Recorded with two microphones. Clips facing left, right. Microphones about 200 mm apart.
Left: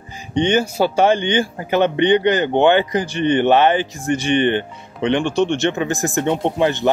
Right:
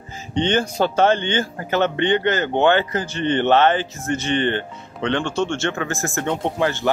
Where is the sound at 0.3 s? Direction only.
10° left (ahead or behind).